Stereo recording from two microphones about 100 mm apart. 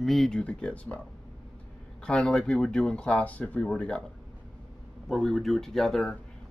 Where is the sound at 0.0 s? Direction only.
5° left (ahead or behind).